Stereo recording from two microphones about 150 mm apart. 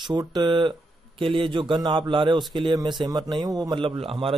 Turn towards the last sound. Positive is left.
turn(degrees=-40)  # may be behind; listen again after turning